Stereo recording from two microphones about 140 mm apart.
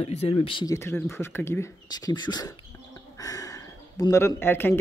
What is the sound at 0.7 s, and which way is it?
A woman's voice, 20° left (ahead or behind).